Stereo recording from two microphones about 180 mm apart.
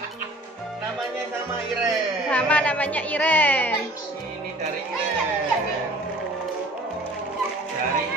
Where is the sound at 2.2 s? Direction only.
5° left (ahead or behind).